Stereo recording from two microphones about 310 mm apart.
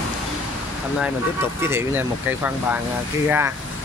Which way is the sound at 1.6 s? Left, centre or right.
Centre.